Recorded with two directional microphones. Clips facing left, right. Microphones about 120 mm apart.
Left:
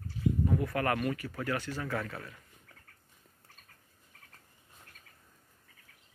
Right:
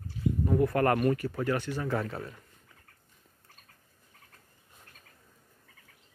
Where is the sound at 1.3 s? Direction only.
20° right (ahead or behind).